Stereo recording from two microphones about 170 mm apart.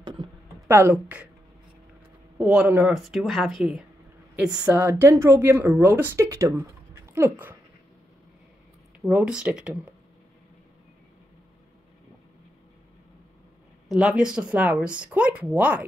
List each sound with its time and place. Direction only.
0.0 s typing: 25° right (ahead or behind)
0.7 s speech: 15° right (ahead or behind)
2.3 s speech: 5° right (ahead or behind)
4.6 s speech: 15° right (ahead or behind)
9.0 s speech: 5° right (ahead or behind)
13.8 s speech: 5° right (ahead or behind)